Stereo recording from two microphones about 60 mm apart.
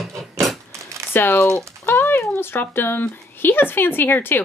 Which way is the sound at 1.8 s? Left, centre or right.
Left.